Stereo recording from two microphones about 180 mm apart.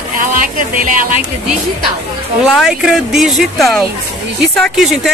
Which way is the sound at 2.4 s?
Centre (ahead or behind).